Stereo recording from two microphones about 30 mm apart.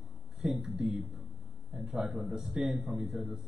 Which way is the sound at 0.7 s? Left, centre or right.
Centre.